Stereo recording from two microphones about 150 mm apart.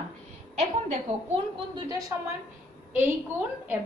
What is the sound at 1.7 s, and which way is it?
Speech, 25° right (ahead or behind).